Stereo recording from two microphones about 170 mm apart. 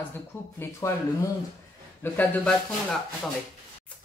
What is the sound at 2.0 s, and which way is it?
Speech, 15° left (ahead or behind).